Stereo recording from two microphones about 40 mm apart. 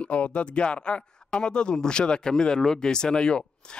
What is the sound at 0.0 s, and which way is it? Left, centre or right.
Speech, left.